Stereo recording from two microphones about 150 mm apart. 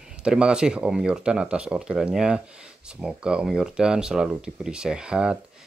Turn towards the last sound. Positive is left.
turn(degrees=-5)  # may be behind; listen again after turning